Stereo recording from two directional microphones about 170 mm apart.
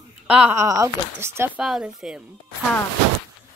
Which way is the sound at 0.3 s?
10° right (ahead or behind).